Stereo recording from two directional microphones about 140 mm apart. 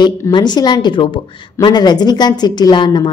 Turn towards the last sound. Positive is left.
turn(degrees=30)  # may be behind; listen again after turning